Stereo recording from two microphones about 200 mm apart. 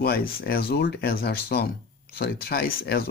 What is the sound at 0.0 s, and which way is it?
Speech, 50° left (ahead or behind).